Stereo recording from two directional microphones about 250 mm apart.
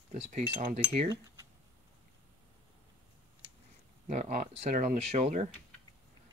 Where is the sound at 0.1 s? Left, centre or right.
Right.